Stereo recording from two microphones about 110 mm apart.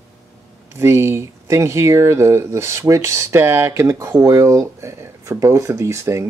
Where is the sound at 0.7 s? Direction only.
25° right (ahead or behind).